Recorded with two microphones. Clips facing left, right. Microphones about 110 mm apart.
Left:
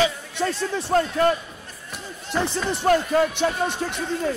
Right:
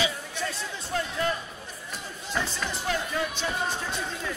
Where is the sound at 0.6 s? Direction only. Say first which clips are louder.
Left 10 dB; 80° left; by 1.3 s 65° left (ahead or behind).